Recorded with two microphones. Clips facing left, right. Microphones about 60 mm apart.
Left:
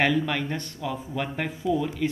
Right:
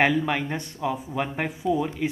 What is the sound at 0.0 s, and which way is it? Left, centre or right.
Speech, centre.